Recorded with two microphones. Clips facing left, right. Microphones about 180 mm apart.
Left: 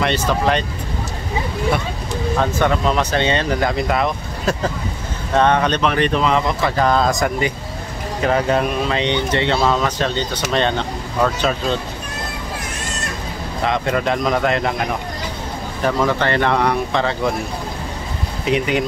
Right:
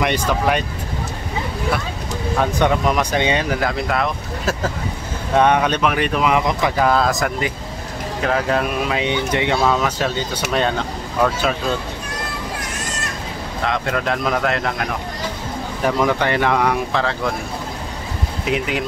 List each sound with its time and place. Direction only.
0.0 s speech: 10° right (ahead or behind)
2.3 s speech: 15° right (ahead or behind)
5.3 s speech: 10° right (ahead or behind)
13.7 s speech: centre (ahead or behind)
15.8 s speech: 10° right (ahead or behind)
18.4 s speech: centre (ahead or behind)